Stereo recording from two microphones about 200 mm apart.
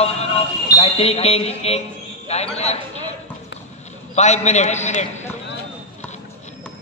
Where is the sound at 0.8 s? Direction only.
30° left (ahead or behind).